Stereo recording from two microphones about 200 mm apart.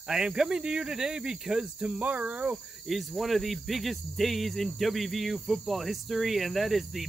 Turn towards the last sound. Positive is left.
turn(degrees=0)  # may be behind; listen again after turning